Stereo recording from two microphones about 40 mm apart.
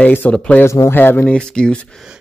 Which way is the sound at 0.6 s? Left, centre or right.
Left.